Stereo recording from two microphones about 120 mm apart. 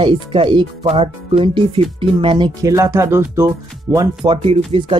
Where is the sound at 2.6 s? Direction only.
25° right (ahead or behind).